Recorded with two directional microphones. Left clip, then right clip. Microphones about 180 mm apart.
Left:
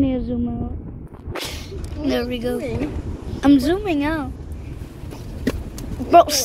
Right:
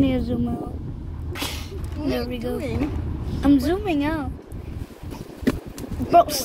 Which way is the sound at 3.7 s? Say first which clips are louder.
Left 2 dB; 10° right (ahead or behind).